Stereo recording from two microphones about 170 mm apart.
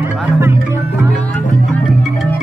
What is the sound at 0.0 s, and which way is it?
Music, 15° right (ahead or behind).